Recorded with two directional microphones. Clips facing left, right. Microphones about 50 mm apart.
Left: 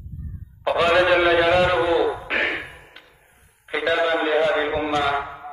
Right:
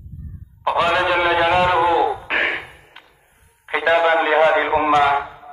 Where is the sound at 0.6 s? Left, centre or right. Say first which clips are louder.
Even; centre.